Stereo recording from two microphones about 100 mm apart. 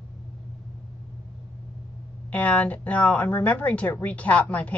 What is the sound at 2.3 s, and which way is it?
Speech, 15° left (ahead or behind).